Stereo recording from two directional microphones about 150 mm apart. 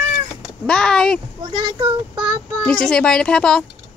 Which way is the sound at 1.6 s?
30° right (ahead or behind).